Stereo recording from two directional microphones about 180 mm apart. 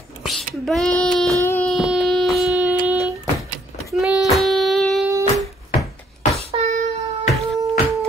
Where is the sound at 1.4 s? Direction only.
15° left (ahead or behind).